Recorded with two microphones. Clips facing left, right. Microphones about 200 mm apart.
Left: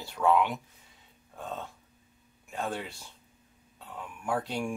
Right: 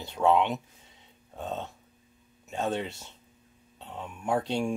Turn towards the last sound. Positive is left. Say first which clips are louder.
# right 4 dB
turn(degrees=-25)  # may be behind; listen again after turning